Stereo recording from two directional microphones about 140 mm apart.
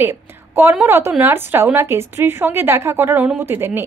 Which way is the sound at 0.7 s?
15° right (ahead or behind).